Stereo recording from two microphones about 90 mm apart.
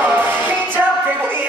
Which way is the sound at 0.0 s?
20° right (ahead or behind).